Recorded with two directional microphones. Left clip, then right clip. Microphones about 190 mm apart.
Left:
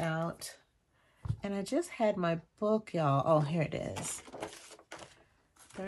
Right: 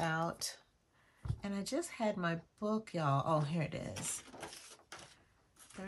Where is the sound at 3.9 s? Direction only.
20° left (ahead or behind).